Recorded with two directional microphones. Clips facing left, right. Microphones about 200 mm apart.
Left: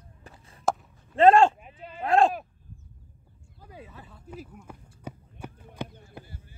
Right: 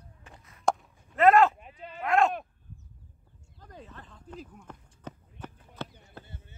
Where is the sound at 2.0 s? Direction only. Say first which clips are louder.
Left 3 dB; 30° left (ahead or behind).